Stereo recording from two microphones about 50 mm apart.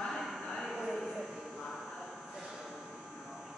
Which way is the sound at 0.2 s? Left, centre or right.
Centre.